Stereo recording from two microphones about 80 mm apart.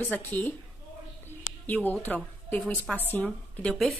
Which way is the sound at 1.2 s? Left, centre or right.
Left.